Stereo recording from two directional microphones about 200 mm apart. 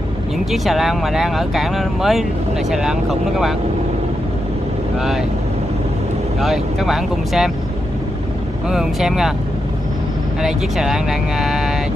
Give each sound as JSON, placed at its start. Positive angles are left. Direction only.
{"t": 0.5, "sound": "speech", "side_deg": 0}
{"t": 6.4, "sound": "speech", "side_deg": 0}
{"t": 8.6, "sound": "speech", "side_deg": -5}
{"t": 10.4, "sound": "speech", "side_deg": 0}